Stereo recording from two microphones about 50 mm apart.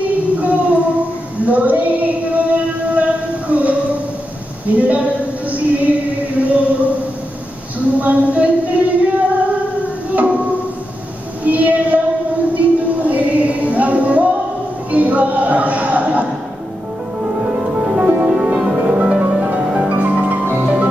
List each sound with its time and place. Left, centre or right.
0.4 s a sound: right
1.4 s female singing: right
4.6 s a sound: right
8.0 s music: right
11.4 s child singing: right
12.5 s music: right
20.5 s music: centre